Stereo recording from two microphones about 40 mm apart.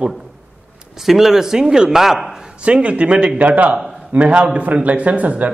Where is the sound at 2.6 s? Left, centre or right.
Right.